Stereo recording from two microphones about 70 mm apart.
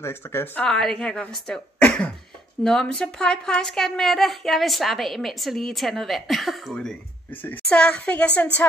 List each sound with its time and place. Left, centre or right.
0.0 s speech: left
0.7 s a woman's voice: centre